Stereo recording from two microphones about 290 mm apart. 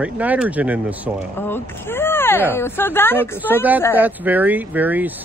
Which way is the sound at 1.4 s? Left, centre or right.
Centre.